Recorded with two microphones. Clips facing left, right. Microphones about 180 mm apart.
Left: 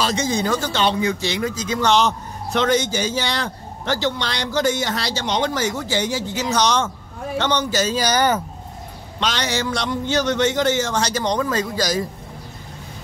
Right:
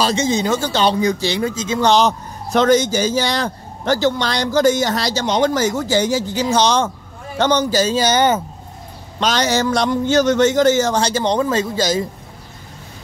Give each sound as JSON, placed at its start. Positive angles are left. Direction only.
{"t": 0.0, "sound": "speech", "side_deg": -25}
{"t": 7.3, "sound": "a man's voice", "side_deg": -40}
{"t": 9.2, "sound": "speech", "side_deg": -40}